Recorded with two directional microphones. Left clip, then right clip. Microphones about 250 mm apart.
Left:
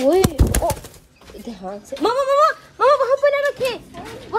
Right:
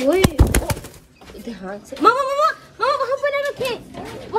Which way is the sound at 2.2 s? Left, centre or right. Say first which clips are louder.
Left 3 dB; left.